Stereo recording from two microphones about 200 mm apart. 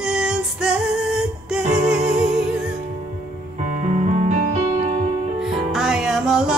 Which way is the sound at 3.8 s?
35° right (ahead or behind).